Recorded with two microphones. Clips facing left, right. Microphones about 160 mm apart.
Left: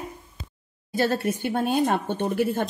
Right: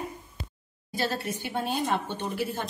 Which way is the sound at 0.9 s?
50° left (ahead or behind).